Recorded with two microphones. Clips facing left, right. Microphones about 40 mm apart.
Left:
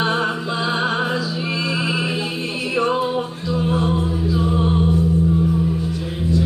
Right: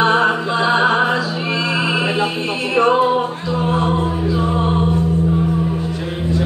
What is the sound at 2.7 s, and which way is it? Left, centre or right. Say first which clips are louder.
Music: right 6 dB; right.